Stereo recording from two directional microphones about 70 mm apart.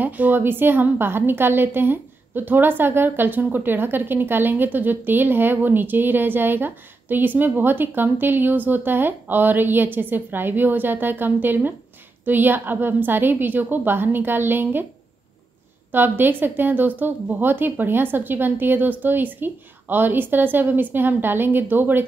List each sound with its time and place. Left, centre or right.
0.0 s a woman's voice: right
15.9 s a woman's voice: right